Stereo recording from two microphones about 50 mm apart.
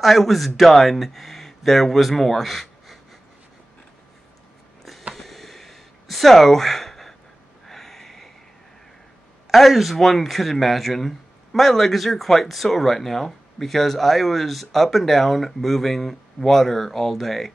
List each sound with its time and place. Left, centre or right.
0.0 s speech: centre
5.1 s a sound: centre
9.5 s speech: centre